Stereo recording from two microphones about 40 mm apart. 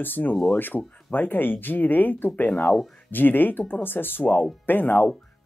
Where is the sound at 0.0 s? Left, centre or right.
Left.